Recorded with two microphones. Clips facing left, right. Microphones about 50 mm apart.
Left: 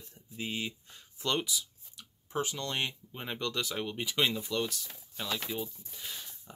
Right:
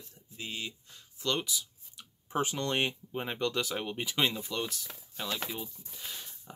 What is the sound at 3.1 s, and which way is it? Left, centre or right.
Speech, centre.